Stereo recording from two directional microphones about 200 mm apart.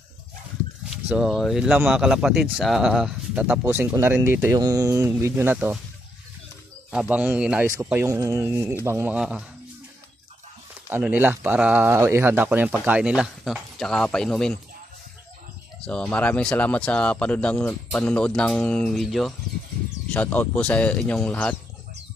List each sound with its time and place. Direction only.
0.8 s speech: 5° right (ahead or behind)
6.9 s speech: 5° right (ahead or behind)
7.6 s speech: 15° right (ahead or behind)
10.9 s speech: 10° right (ahead or behind)
15.8 s speech: 5° left (ahead or behind)